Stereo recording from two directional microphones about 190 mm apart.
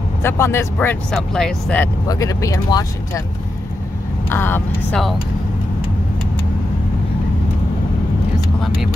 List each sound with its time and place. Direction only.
0.2 s speech: 15° left (ahead or behind)
2.0 s speech: 20° left (ahead or behind)
4.3 s speech: 10° left (ahead or behind)